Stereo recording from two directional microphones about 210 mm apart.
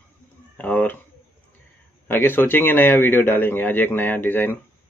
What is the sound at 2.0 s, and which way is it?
A man's voice, 10° left (ahead or behind).